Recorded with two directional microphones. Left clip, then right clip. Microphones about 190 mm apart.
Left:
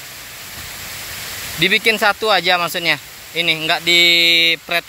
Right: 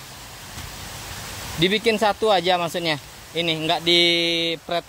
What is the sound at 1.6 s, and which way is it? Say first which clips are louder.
Speech: left 5 dB; 10° right (ahead or behind).